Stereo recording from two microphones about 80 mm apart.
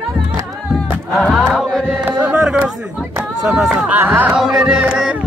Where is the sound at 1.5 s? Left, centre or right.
Centre.